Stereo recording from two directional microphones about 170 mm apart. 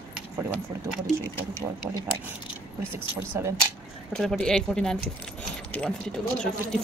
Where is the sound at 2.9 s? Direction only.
15° right (ahead or behind).